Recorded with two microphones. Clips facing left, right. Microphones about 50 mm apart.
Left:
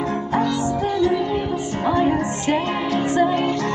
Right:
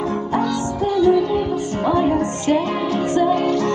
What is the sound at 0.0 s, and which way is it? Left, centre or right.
Music, centre.